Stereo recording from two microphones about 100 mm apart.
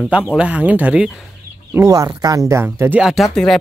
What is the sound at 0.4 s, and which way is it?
Speech, 15° right (ahead or behind).